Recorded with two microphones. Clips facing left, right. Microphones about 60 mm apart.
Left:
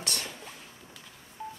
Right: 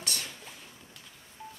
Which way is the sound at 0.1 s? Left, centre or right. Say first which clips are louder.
Left 2 dB; centre.